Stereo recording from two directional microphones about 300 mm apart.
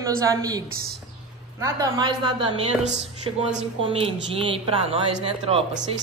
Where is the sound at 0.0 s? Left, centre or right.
Centre.